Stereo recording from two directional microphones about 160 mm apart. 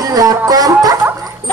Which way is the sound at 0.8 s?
20° right (ahead or behind).